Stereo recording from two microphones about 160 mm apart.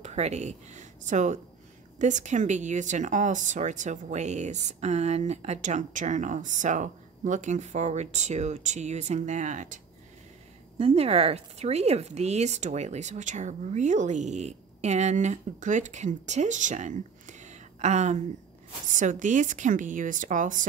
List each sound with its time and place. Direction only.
0.0 s speech: 45° right (ahead or behind)
10.8 s speech: 40° right (ahead or behind)